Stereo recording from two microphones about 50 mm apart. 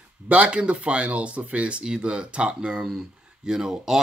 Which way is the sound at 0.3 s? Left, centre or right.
Right.